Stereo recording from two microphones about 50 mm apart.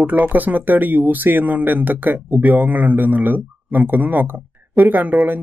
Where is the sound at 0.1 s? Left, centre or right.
Right.